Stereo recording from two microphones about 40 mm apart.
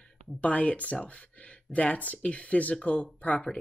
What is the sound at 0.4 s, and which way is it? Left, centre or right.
Speech, left.